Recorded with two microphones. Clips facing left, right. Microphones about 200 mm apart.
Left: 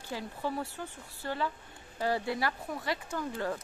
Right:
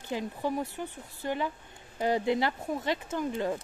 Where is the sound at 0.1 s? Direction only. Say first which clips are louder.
Right 4 dB; 20° right (ahead or behind).